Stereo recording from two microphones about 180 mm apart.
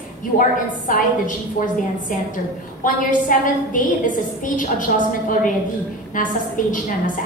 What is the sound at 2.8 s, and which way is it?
Speech, 45° left (ahead or behind).